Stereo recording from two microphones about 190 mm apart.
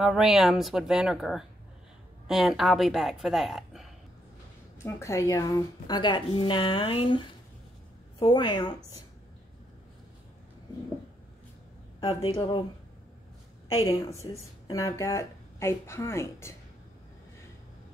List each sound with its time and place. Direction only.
0.0 s speech: centre (ahead or behind)
4.8 s speech: 15° left (ahead or behind)
12.3 s speech: 25° left (ahead or behind)
13.7 s speech: 20° left (ahead or behind)